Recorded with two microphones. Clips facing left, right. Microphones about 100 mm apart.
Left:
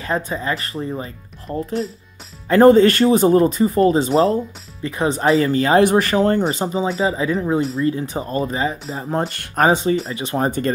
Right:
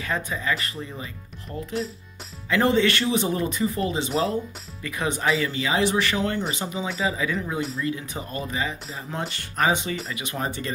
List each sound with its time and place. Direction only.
0.0 s speech: 35° left (ahead or behind)